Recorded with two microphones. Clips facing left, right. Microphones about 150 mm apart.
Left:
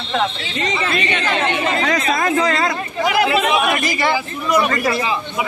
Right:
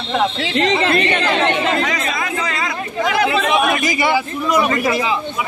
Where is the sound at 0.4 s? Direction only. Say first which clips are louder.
Right 6 dB; 75° right (ahead or behind); by 1.3 s 60° right (ahead or behind).